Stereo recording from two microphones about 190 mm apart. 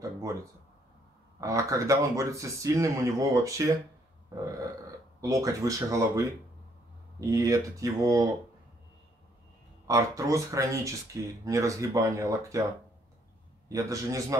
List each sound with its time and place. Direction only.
0.0 s a sound: 15° right (ahead or behind)
1.4 s speech: 15° right (ahead or behind)
5.2 s speech: 15° right (ahead or behind)
9.8 s speech: 15° right (ahead or behind)
13.7 s speech: 15° right (ahead or behind)